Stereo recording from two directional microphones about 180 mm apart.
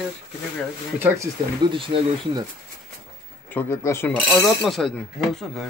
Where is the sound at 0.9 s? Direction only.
15° right (ahead or behind).